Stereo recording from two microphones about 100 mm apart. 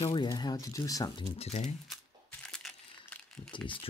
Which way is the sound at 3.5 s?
55° left (ahead or behind).